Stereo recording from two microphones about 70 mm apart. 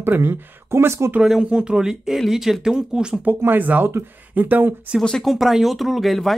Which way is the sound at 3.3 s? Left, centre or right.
Right.